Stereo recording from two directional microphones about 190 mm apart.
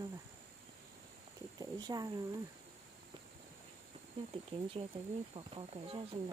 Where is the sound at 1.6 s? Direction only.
20° right (ahead or behind).